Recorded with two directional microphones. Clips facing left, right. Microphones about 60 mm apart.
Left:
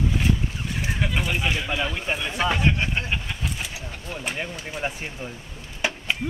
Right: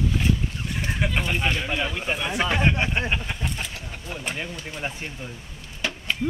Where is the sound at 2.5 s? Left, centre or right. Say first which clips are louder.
Right 1 dB; right.